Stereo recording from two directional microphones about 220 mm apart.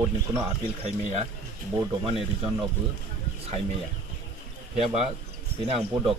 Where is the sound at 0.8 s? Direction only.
30° right (ahead or behind).